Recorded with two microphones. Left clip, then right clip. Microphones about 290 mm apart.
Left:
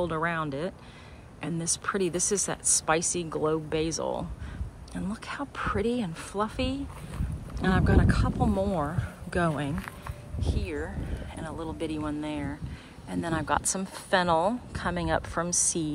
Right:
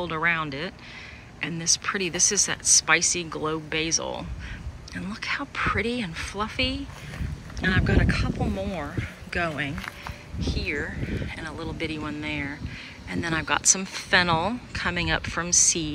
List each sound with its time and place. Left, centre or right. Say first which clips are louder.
0.0 s speech: right 4 dB; centre